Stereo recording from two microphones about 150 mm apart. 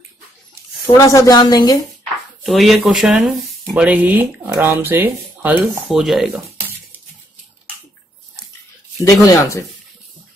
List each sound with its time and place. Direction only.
0.8 s speech: 20° left (ahead or behind)
2.4 s speech: centre (ahead or behind)
5.9 s speech: centre (ahead or behind)
9.0 s speech: 20° left (ahead or behind)